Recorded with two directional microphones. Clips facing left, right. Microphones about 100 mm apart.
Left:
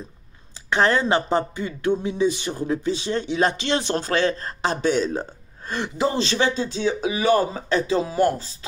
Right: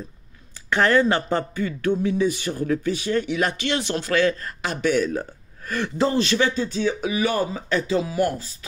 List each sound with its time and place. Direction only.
0.7 s speech: 20° left (ahead or behind)